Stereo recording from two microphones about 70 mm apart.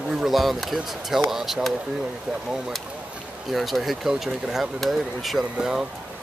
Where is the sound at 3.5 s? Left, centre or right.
Centre.